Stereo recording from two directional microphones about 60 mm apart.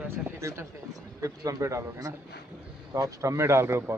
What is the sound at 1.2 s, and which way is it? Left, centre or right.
Speech, right.